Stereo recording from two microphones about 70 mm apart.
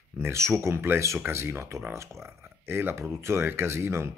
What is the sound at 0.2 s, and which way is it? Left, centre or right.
Speech, right.